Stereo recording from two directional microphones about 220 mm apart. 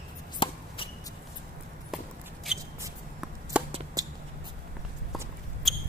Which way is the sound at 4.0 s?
15° right (ahead or behind).